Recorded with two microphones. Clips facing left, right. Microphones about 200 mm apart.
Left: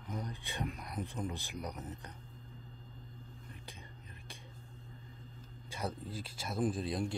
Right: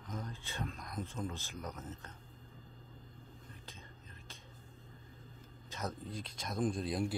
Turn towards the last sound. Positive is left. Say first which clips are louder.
# even
turn(degrees=0)  # may be behind; listen again after turning